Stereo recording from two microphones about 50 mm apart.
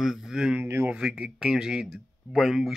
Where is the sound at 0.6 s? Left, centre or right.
Right.